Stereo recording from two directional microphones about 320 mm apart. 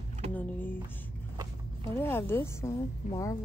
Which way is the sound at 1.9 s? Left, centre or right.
Centre.